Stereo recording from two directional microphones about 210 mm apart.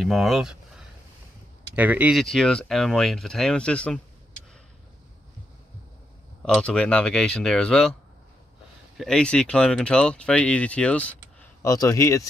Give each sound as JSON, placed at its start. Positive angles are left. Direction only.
{"t": 0.0, "sound": "speech", "side_deg": 0}
{"t": 1.8, "sound": "speech", "side_deg": -10}
{"t": 6.4, "sound": "speech", "side_deg": 5}
{"t": 8.9, "sound": "speech", "side_deg": 5}